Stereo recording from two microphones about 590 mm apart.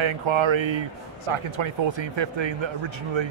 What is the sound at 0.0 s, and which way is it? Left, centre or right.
A man's voice, right.